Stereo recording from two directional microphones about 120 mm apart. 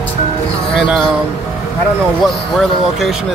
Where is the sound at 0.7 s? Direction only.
10° right (ahead or behind).